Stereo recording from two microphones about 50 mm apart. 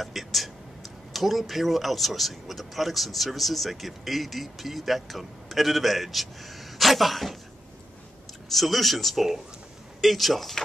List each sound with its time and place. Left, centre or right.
0.0 s a sound: centre
1.1 s speech: centre
8.5 s speech: centre